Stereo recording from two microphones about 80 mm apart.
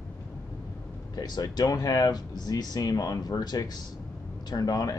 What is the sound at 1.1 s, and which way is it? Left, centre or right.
Speech, left.